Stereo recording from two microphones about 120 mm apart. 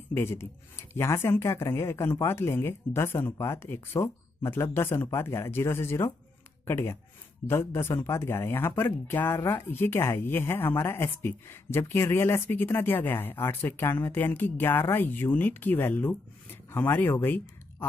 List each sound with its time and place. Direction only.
0.1 s speech: 20° left (ahead or behind)